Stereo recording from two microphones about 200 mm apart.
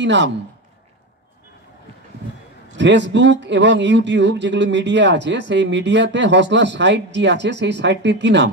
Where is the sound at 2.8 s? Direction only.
65° right (ahead or behind).